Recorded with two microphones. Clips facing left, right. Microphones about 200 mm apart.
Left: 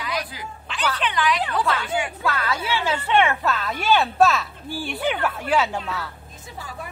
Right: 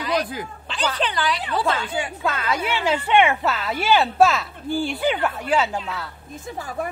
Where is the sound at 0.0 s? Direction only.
35° right (ahead or behind).